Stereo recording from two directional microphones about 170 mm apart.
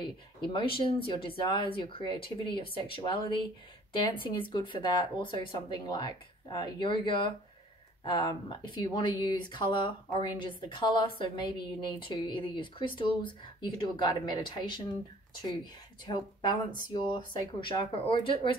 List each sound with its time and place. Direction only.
0.0 s a woman's voice: 25° left (ahead or behind)
16.1 s a woman's voice: 25° left (ahead or behind)